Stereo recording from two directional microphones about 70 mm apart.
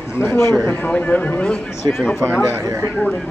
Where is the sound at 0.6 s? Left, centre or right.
Left.